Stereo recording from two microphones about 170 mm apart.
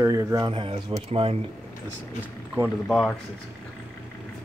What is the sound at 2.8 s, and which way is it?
Speech, 5° left (ahead or behind).